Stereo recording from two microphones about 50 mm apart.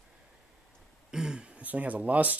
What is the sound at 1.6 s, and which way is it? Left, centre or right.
Speech, right.